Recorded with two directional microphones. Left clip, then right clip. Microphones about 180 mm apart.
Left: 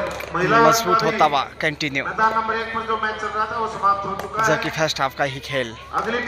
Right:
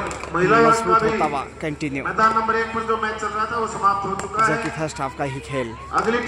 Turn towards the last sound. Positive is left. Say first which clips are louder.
# right 2 dB
turn(degrees=-35)  # may be behind; listen again after turning